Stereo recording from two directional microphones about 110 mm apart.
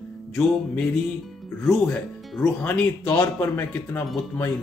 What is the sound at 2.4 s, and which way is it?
Speech, 10° left (ahead or behind).